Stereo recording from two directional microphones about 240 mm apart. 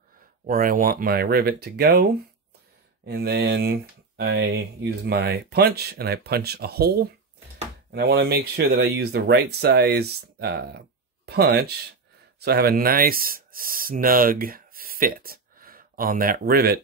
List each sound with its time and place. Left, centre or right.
0.5 s speech: right
3.1 s speech: right